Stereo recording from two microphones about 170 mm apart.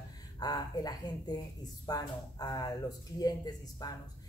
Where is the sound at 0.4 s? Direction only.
20° left (ahead or behind).